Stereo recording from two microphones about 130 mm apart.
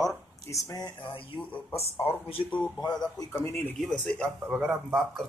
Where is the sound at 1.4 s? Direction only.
15° left (ahead or behind).